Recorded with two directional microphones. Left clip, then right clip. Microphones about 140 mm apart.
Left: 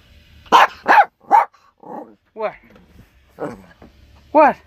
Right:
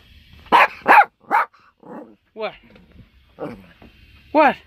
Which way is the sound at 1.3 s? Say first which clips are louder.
Left 5 dB; 25° right (ahead or behind).